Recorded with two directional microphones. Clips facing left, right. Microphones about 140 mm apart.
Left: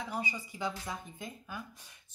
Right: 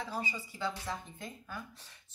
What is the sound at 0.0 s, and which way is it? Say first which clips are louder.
Speech: left 1 dB; 15° left (ahead or behind).